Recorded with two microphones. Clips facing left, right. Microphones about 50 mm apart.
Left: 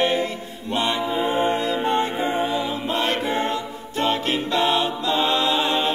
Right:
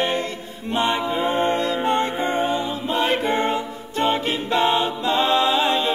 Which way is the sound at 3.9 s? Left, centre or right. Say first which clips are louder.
Right 1 dB; centre.